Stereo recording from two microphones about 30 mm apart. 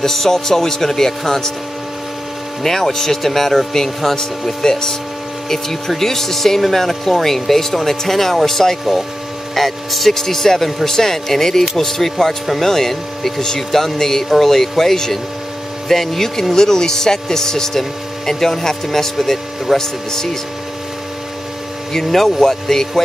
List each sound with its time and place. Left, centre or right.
0.0 s speech: centre
2.6 s speech: centre
19.8 s speech: centre
21.9 s speech: centre